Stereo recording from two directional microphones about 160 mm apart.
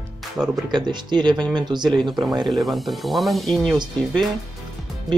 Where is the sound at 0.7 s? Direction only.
25° right (ahead or behind).